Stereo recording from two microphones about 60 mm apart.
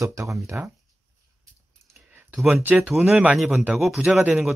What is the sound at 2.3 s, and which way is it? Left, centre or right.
Speech, centre.